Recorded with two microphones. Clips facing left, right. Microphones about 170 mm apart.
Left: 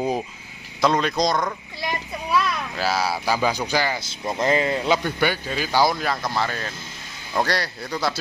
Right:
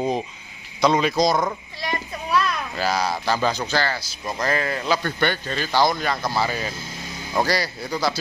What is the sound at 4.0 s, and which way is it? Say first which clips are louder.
A man's voice: left 3 dB; 25° left (ahead or behind).